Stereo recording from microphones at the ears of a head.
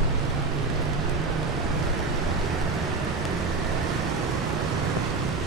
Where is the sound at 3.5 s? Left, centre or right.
Right.